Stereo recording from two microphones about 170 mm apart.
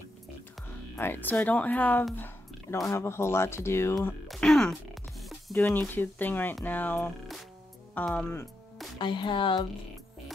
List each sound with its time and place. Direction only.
0.9 s speech: 10° left (ahead or behind)
2.1 s a sound: 10° left (ahead or behind)
2.9 s speech: 15° left (ahead or behind)
4.3 s music: centre (ahead or behind)
5.5 s speech: 15° left (ahead or behind)
8.9 s music: 25° left (ahead or behind)